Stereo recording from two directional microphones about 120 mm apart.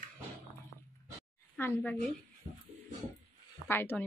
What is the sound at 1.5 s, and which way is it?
Speech, 15° left (ahead or behind).